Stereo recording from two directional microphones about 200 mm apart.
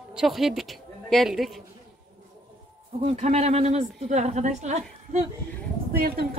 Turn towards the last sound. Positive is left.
turn(degrees=-50)  # may be behind; listen again after turning